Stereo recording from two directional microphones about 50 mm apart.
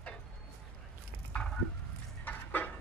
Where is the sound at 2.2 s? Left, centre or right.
Left.